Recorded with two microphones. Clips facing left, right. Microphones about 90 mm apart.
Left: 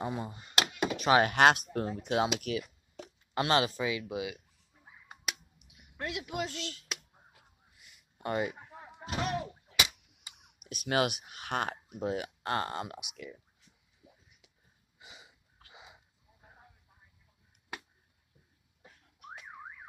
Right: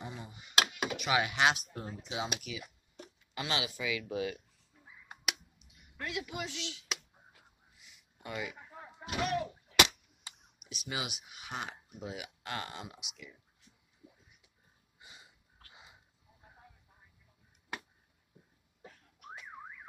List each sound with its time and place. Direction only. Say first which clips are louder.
0.0 s speech: left 9 dB; 45° left (ahead or behind)
3.3 s speech: left 8 dB; 45° left (ahead or behind)
4.1 s speech: right 1 dB; 15° left (ahead or behind)
5.6 s a sound: left 2 dB; 60° left (ahead or behind)
6.3 s speech: left 4 dB; 45° left (ahead or behind)
7.8 s a sound: left 9 dB; 50° left (ahead or behind)
9.0 s slam: even; 35° left (ahead or behind)
9.9 s cap gun: right 2 dB; 70° left (ahead or behind)
10.6 s speech: left 10 dB; 50° left (ahead or behind)
12.8 s speech: left 6 dB; 55° left (ahead or behind)
15.0 s a sound: left 3 dB; 90° left